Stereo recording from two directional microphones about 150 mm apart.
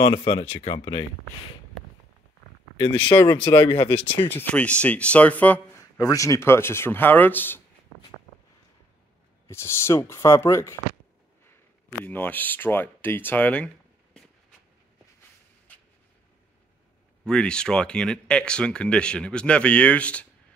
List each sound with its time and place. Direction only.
0.0 s speech: 35° left (ahead or behind)
3.1 s speech: 25° left (ahead or behind)
3.9 s speech: 10° left (ahead or behind)
9.5 s speech: 15° left (ahead or behind)
12.0 s speech: 15° left (ahead or behind)
15.7 s a sound: 10° left (ahead or behind)
17.2 s speech: 5° left (ahead or behind)